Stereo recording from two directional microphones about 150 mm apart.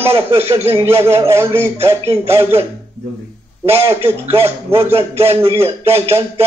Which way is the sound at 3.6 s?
15° right (ahead or behind).